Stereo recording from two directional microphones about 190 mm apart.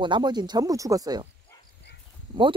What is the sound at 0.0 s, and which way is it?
Speech, 25° right (ahead or behind).